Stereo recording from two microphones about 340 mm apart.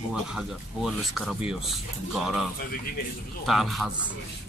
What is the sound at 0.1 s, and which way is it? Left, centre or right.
Speech, centre.